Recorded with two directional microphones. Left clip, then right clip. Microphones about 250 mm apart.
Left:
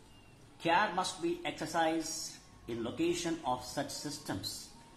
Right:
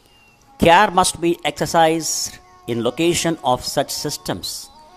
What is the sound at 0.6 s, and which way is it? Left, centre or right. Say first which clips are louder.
A man's voice: right 18 dB; right.